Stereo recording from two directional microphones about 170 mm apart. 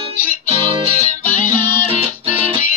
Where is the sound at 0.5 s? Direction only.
35° right (ahead or behind).